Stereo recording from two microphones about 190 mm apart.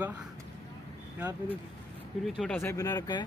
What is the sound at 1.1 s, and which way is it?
Speech, 10° right (ahead or behind).